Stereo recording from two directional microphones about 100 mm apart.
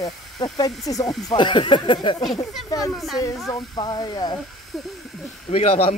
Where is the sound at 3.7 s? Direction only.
40° left (ahead or behind).